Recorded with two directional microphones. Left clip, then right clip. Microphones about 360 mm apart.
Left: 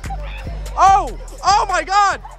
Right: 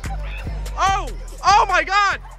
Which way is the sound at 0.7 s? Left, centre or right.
Centre.